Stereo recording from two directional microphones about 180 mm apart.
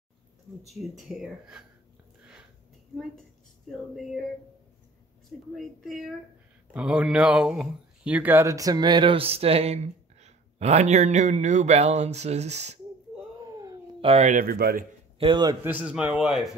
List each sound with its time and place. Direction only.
0.7 s speech: centre (ahead or behind)
3.7 s speech: centre (ahead or behind)
5.5 s speech: centre (ahead or behind); by 12.7 s 40° right (ahead or behind)
13.4 s a sound: 20° right (ahead or behind)
14.0 s speech: 40° right (ahead or behind); by 14.9 s 55° right (ahead or behind)
15.1 s a man's voice: 25° right (ahead or behind)
15.6 s speech: 5° right (ahead or behind)